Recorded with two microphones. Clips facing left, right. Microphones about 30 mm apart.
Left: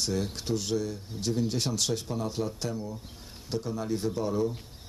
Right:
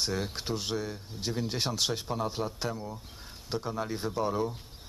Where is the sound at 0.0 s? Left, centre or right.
Centre.